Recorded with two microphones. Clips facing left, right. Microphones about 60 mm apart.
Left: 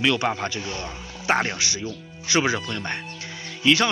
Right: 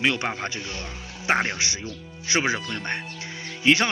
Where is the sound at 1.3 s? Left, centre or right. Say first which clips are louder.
Left 1 dB; centre.